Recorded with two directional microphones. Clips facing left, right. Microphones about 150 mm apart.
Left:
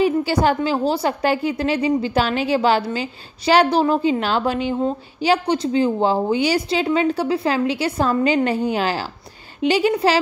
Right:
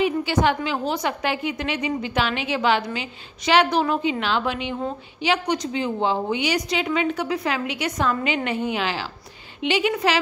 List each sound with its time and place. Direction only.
0.0 s a woman's voice: 35° left (ahead or behind)